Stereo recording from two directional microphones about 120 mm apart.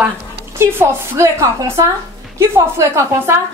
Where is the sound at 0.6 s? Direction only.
20° right (ahead or behind).